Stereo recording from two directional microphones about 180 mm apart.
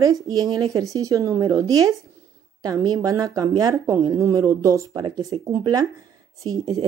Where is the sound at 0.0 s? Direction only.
20° right (ahead or behind).